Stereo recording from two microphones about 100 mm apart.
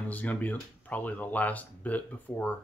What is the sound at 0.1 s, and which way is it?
Speech, 15° left (ahead or behind).